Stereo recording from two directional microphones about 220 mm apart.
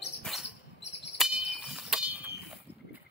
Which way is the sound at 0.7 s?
50° left (ahead or behind).